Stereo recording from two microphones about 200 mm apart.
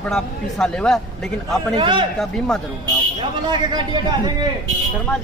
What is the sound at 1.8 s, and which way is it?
Speech, 25° right (ahead or behind).